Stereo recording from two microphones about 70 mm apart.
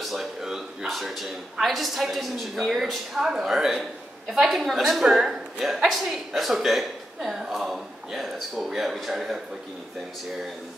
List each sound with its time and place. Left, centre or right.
0.0 s a woman's voice: centre